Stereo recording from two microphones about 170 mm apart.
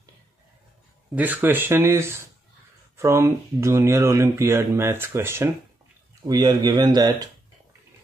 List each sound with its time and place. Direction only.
1.1 s speech: 10° right (ahead or behind)